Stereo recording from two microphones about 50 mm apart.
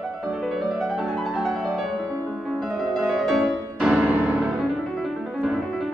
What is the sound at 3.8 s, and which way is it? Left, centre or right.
Music, right.